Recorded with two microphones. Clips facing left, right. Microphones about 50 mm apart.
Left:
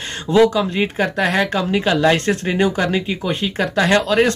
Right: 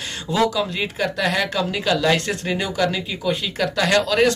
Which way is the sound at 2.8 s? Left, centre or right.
Left.